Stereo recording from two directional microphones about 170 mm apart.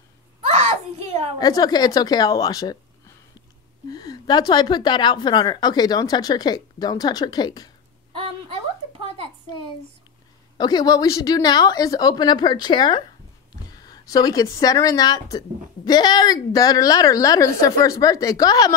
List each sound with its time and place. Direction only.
0.5 s a sound: 40° right (ahead or behind)
1.4 s speech: 20° left (ahead or behind)
3.9 s speech: 25° left (ahead or behind)
10.6 s speech: 25° left (ahead or behind)